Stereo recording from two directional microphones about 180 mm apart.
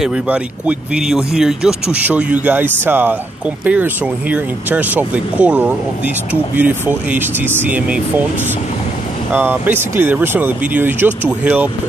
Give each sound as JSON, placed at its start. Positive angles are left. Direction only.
{"t": 0.0, "sound": "speech", "side_deg": -5}
{"t": 9.3, "sound": "speech", "side_deg": -10}